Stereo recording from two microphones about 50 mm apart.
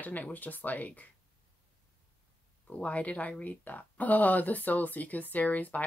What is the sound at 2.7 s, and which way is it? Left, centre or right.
Speech, left.